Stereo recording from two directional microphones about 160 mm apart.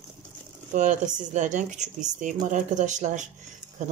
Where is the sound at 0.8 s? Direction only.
50° right (ahead or behind).